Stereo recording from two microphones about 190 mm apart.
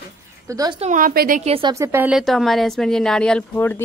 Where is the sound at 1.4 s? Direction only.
30° right (ahead or behind).